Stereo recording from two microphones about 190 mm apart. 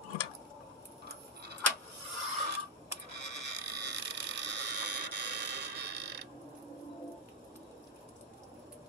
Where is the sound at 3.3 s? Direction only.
65° right (ahead or behind).